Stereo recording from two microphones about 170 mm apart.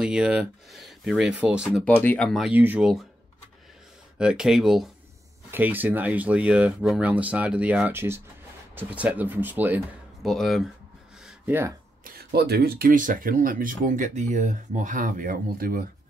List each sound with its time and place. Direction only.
0.0 s speech: 5° right (ahead or behind)
1.9 s speech: 10° left (ahead or behind)
4.2 s speech: 5° right (ahead or behind)
10.2 s speech: centre (ahead or behind)
11.2 s a sound: 10° right (ahead or behind)
12.0 s speech: 70° right (ahead or behind)